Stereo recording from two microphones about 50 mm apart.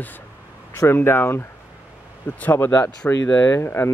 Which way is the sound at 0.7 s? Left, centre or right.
Left.